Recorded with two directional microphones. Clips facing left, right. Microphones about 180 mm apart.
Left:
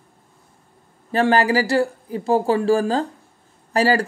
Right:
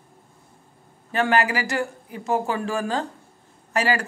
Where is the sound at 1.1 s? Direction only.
35° left (ahead or behind).